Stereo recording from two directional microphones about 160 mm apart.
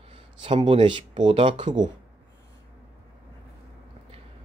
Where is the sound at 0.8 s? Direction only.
30° right (ahead or behind).